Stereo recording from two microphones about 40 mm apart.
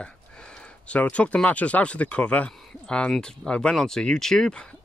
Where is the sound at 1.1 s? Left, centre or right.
Left.